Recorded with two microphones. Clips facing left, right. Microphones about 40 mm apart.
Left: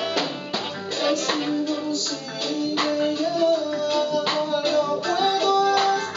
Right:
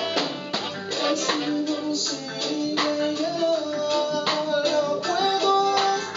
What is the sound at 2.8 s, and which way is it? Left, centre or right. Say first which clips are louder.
Music: left 2 dB; centre.